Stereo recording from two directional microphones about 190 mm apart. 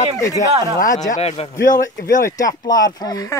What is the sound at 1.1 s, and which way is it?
Speech, 35° left (ahead or behind).